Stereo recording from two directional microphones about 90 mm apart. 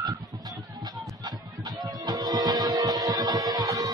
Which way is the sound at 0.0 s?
45° right (ahead or behind).